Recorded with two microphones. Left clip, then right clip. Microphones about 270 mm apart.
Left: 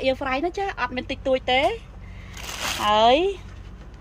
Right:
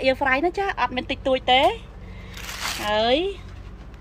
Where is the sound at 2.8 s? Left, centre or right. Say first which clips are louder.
Left 4 dB; centre.